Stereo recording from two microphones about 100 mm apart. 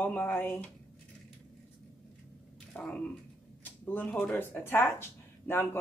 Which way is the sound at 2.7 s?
10° left (ahead or behind).